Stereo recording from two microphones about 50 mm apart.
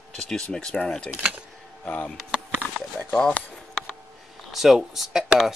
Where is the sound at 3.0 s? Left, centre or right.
Centre.